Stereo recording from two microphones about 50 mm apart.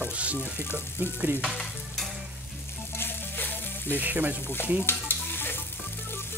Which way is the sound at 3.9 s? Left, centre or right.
Right.